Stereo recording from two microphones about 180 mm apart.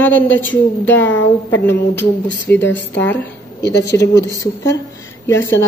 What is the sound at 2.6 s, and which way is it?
A woman's voice, 80° left.